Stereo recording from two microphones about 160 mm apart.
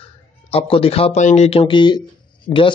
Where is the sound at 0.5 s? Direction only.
35° left (ahead or behind).